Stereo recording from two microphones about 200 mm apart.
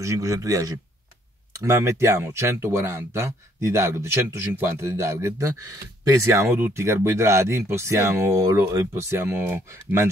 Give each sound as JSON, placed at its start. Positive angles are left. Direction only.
{"t": 0.0, "sound": "speech", "side_deg": -15}